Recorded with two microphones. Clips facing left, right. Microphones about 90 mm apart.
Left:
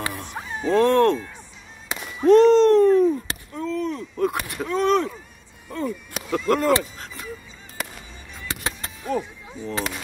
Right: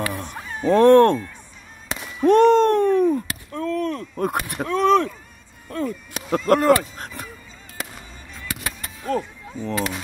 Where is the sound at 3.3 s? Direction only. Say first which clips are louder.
Even; 30° left (ahead or behind).